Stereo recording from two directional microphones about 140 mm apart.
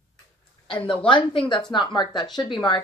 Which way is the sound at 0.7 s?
40° left (ahead or behind).